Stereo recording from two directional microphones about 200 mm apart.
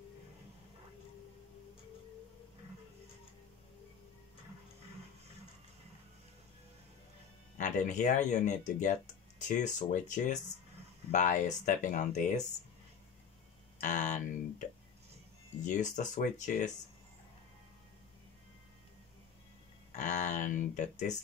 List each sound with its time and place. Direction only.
7.5 s speech: 40° left (ahead or behind)
13.7 s speech: 40° left (ahead or behind)
15.6 s speech: 40° left (ahead or behind)
19.9 s speech: 40° left (ahead or behind)